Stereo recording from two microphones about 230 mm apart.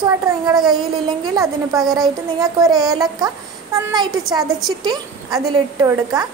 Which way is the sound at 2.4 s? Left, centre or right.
Centre.